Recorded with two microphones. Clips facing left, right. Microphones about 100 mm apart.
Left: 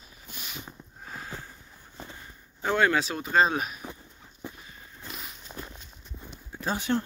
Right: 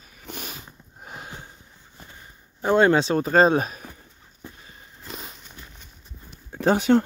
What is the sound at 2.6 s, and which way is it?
Speech, 25° right (ahead or behind).